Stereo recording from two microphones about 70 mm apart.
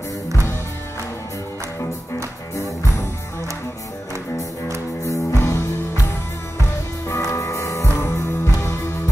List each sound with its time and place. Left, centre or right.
2.5 s music: left
5.0 s music: left